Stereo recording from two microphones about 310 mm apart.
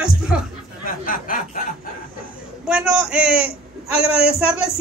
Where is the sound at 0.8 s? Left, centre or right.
Left.